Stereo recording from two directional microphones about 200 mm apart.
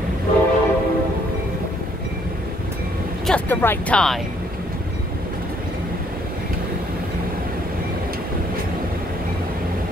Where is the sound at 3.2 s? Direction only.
5° left (ahead or behind).